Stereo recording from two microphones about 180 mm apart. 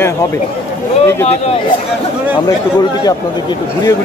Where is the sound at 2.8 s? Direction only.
25° left (ahead or behind).